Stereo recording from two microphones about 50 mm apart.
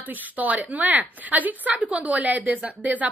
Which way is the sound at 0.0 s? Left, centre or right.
Right.